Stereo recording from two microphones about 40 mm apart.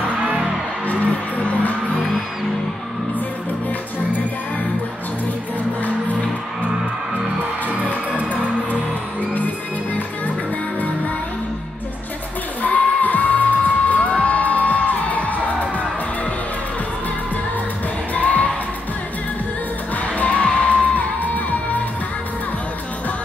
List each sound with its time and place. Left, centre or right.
1.4 s music: left
8.1 s music: right
12.6 s music: left
18.1 s music: left
20.2 s music: left